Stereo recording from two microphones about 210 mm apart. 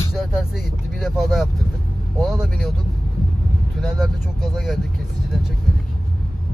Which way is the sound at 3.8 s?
Centre (ahead or behind).